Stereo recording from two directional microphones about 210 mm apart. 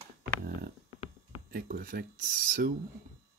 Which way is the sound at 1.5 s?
45° right (ahead or behind).